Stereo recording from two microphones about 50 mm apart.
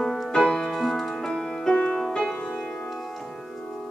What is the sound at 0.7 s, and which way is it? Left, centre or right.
Music, centre.